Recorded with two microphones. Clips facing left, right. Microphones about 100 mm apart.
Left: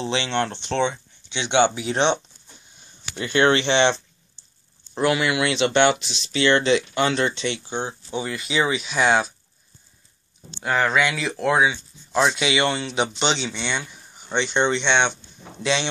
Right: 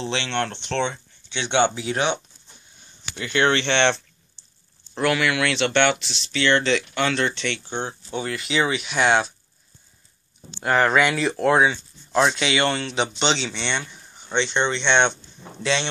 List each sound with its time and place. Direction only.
0.0 s speech: 10° left (ahead or behind)
1.9 s speech: 30° left (ahead or behind)
3.2 s speech: 25° left (ahead or behind)
3.7 s speech: 5° left (ahead or behind)
4.9 s speech: 20° left (ahead or behind); by 9.3 s centre (ahead or behind)
10.6 s speech: centre (ahead or behind)